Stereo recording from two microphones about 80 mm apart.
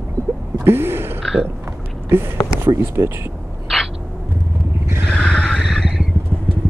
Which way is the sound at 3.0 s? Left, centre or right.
Right.